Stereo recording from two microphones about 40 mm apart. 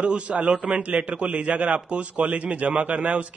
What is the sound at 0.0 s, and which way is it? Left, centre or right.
A man's voice, right.